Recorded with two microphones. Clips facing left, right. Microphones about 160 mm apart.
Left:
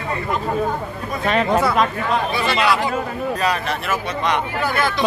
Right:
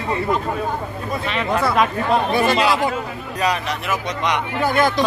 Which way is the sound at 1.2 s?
45° left (ahead or behind).